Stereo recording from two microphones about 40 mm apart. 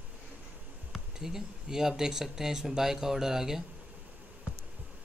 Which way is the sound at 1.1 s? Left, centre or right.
Centre.